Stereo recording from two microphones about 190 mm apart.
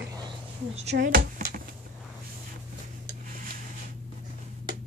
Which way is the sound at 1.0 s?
50° right (ahead or behind).